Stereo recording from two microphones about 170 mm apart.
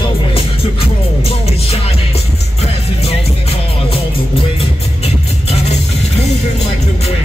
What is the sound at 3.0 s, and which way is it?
Music, 35° left (ahead or behind).